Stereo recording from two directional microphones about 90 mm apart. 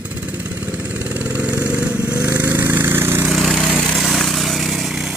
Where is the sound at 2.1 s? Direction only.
15° right (ahead or behind).